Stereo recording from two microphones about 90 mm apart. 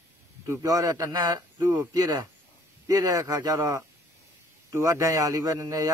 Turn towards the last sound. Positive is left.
turn(degrees=-40)  # may be behind; listen again after turning